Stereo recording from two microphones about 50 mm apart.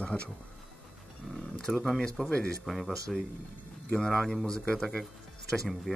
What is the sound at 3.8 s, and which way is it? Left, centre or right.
Speech, centre.